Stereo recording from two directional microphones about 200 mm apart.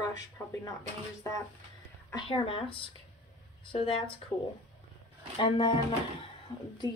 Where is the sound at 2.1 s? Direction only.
25° left (ahead or behind).